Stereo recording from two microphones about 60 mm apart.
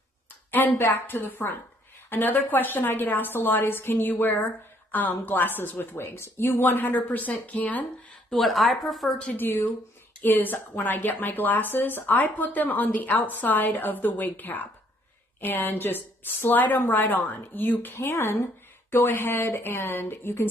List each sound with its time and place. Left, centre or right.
0.5 s speech: left
8.3 s speech: centre
9.2 s speech: left
17.9 s speech: left